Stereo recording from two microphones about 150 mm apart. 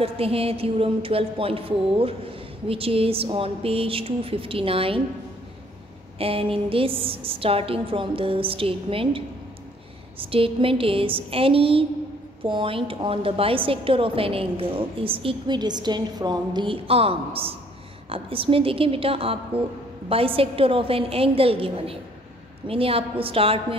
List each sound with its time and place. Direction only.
0.0 s a woman's voice: 40° right (ahead or behind)
6.1 s a woman's voice: 40° right (ahead or behind)